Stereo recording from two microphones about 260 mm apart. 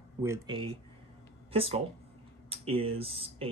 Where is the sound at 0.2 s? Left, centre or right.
Centre.